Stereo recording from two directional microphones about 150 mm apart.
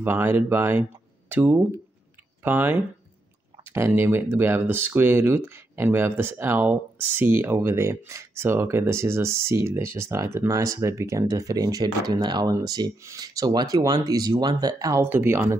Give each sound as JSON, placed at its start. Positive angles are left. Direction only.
{"t": 0.0, "sound": "speech", "side_deg": -15}